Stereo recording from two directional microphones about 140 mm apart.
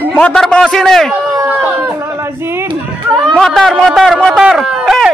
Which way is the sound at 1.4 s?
15° right (ahead or behind).